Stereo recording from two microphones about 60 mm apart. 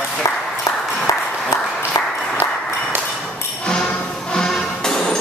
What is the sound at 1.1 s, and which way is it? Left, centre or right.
Applause, left.